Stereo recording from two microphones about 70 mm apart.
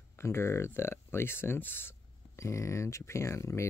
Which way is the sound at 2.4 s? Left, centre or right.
Left.